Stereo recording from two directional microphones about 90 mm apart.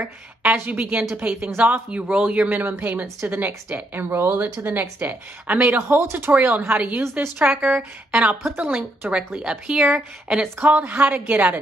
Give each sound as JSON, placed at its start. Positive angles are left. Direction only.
{"t": 0.4, "sound": "a woman's voice", "side_deg": -20}